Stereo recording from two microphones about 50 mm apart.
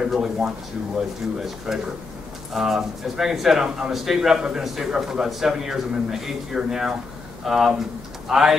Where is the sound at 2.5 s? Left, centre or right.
Centre.